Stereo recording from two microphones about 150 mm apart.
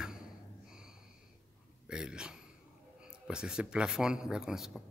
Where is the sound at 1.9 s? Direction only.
5° right (ahead or behind).